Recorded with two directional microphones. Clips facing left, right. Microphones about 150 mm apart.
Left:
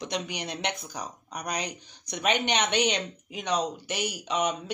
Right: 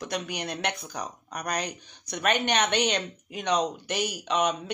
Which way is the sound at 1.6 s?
15° left (ahead or behind).